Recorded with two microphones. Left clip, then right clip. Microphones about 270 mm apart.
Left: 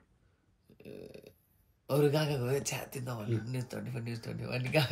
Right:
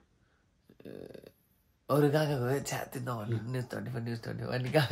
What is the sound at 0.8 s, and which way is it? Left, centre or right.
Speech, centre.